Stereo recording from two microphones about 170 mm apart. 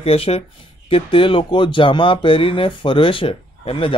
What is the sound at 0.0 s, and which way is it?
Speech, 35° left (ahead or behind).